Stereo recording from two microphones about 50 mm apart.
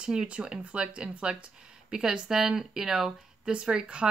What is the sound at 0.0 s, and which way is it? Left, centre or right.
Speech, centre.